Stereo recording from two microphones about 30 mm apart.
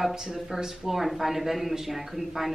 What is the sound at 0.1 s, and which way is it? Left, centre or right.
Speech, right.